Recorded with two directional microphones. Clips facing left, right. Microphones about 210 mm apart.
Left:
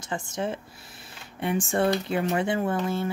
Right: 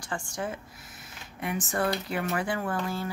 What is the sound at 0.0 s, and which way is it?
Speech, 20° left (ahead or behind).